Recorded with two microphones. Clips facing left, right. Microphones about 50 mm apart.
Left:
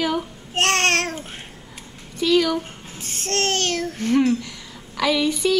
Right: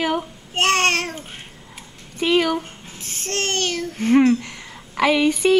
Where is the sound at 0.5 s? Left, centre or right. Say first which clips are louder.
Right 1 dB; centre.